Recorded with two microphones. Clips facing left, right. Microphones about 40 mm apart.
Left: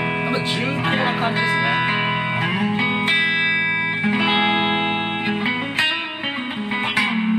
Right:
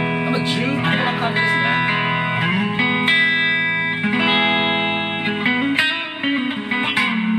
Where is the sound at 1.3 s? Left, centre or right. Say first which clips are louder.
Right 2 dB; centre.